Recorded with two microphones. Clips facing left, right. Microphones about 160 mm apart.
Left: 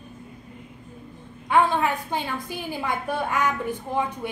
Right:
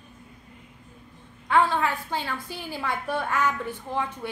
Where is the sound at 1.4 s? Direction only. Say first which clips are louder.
Left 2 dB; 15° left (ahead or behind).